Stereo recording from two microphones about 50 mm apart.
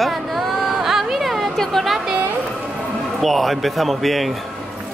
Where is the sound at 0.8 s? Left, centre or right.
Centre.